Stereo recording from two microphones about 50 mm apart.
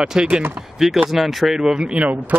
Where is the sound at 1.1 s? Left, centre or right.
Centre.